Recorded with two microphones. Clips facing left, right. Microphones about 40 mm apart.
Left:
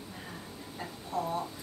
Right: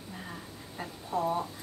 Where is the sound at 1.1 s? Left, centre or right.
Centre.